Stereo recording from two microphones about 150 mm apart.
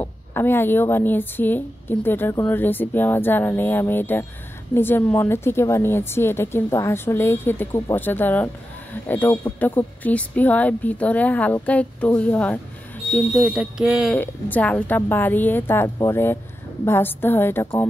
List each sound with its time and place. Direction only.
0.0 s speech: 15° left (ahead or behind); by 14.1 s 5° right (ahead or behind)
14.1 s speech: 10° left (ahead or behind)